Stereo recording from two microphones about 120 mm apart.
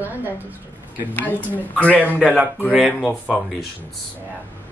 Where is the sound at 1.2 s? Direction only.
15° left (ahead or behind).